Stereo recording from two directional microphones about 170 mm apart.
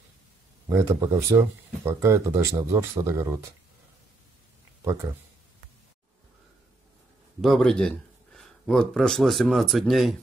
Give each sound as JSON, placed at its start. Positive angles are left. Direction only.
{"t": 0.7, "sound": "speech", "side_deg": -20}
{"t": 7.4, "sound": "speech", "side_deg": 0}